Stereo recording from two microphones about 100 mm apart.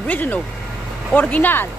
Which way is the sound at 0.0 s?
15° left (ahead or behind).